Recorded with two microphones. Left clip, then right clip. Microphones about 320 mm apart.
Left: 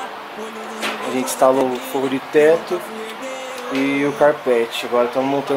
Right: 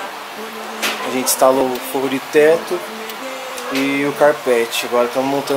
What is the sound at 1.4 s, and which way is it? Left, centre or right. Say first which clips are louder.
Speech: right 1 dB; left.